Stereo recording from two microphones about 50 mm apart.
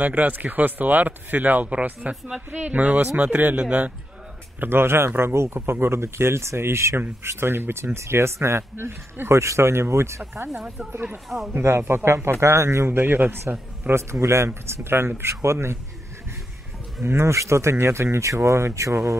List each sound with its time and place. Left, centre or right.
0.0 s speech: right
4.6 s speech: right
9.3 s speech: right
10.5 s speech: centre
11.6 s speech: right
12.4 s speech: right
14.2 s speech: right
17.0 s speech: right